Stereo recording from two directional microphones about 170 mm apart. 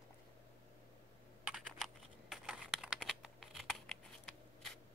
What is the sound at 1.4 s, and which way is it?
Computer keyboard, centre (ahead or behind).